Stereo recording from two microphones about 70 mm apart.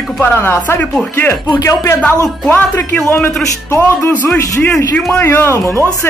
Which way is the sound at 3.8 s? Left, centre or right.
Left.